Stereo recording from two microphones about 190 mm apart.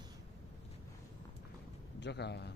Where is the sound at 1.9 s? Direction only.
65° left (ahead or behind).